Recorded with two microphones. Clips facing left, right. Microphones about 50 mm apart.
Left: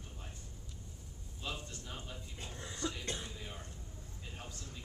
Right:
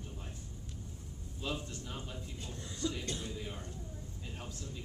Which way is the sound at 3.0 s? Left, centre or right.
Left.